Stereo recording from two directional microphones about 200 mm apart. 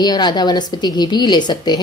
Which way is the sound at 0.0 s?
20° left (ahead or behind).